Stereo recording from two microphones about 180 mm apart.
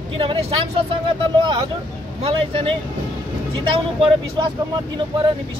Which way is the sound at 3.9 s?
25° right (ahead or behind).